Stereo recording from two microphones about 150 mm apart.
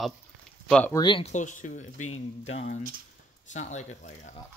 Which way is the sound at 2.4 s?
45° left (ahead or behind).